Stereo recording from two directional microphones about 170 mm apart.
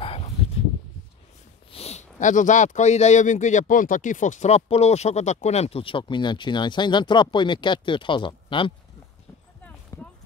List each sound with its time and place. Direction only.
0.0 s a sound: 35° left (ahead or behind)
1.7 s speech: 35° left (ahead or behind)
9.9 s clip-clop: 20° left (ahead or behind)